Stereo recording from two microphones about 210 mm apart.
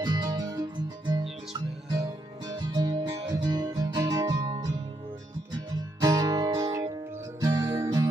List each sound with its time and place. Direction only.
0.0 s music: 20° right (ahead or behind)
2.4 s music: 20° right (ahead or behind)
5.9 s music: 15° right (ahead or behind)